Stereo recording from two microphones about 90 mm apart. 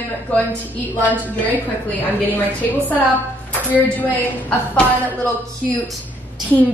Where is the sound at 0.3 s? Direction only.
20° left (ahead or behind).